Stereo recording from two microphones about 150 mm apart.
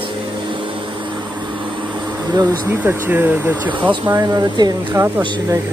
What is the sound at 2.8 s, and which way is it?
Speech, 10° right (ahead or behind).